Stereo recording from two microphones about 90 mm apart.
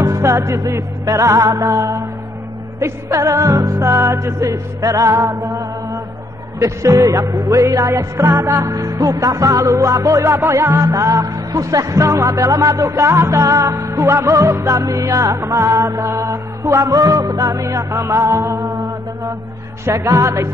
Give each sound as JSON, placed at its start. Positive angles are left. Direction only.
{"t": 0.0, "sound": "music", "side_deg": -35}